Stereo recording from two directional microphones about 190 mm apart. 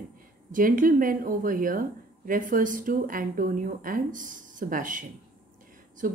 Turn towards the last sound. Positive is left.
turn(degrees=-45)  # may be behind; listen again after turning